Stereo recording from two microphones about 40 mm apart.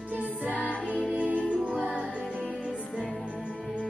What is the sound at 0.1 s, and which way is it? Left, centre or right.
Music, right.